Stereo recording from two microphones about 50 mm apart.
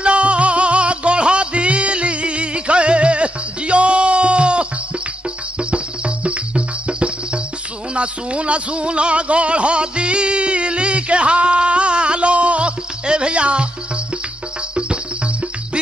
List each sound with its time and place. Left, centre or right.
0.0 s music: right
7.9 s speech: right